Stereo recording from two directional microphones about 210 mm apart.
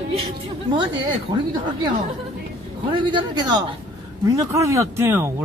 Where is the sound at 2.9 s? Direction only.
20° right (ahead or behind).